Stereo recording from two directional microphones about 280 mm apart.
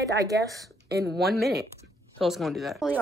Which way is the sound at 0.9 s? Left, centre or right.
Right.